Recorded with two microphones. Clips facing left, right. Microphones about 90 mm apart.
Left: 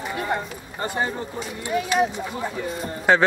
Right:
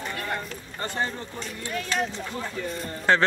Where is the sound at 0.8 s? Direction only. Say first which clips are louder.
Left 4 dB; 15° left (ahead or behind).